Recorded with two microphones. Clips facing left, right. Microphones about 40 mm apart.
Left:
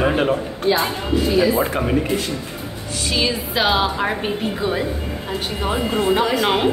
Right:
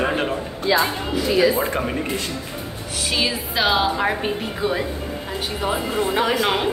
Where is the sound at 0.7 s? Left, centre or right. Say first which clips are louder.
Left 1 dB; right.